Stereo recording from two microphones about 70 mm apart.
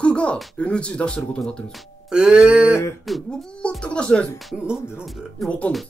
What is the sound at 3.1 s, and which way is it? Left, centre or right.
Speech, centre.